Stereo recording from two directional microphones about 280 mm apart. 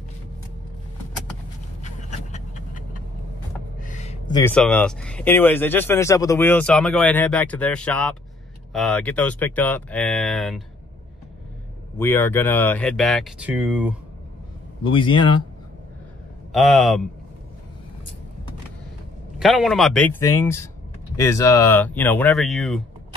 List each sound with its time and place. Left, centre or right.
1.8 s pant: left
3.8 s a sound: left
4.4 s speech: centre
12.0 s speech: centre
15.0 s speech: centre
16.5 s speech: centre
19.3 s speech: centre